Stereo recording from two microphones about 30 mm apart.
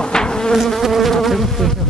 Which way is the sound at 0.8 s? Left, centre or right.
Centre.